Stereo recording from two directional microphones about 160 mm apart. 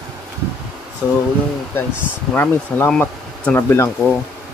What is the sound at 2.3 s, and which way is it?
Speech, 10° left (ahead or behind).